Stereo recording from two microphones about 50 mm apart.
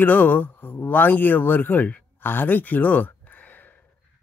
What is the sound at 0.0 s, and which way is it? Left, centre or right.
Speech, left.